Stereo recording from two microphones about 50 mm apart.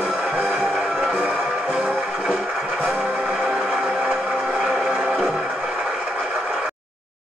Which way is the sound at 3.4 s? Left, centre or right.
Centre.